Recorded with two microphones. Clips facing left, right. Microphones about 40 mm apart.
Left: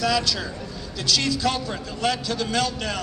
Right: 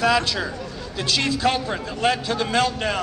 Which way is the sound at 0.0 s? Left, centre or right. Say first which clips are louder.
Right 3 dB; right.